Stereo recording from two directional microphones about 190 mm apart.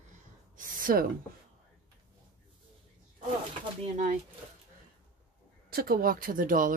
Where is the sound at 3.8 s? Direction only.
40° right (ahead or behind).